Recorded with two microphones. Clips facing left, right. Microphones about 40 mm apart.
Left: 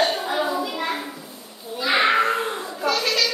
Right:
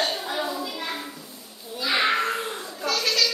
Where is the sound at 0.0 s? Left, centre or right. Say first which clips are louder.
Left 5 dB; centre.